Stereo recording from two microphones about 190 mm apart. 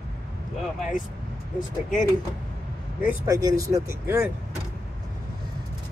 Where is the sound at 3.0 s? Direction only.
10° right (ahead or behind).